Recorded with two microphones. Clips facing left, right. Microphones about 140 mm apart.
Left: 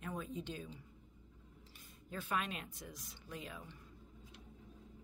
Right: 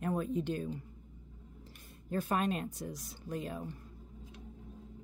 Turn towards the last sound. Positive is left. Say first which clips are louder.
# right 9 dB
turn(degrees=-45)  # may be behind; listen again after turning